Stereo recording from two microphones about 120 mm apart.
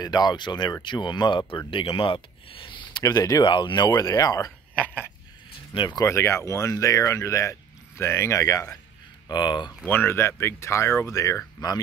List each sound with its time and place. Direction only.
0.0 s speech: 35° left (ahead or behind)
3.0 s speech: 30° left (ahead or behind)
4.7 s a sound: 15° left (ahead or behind)
5.7 s speech: 35° left (ahead or behind)
6.0 s speech: 20° left (ahead or behind)
9.3 s speech: 40° left (ahead or behind)
9.8 s speech: 15° left (ahead or behind)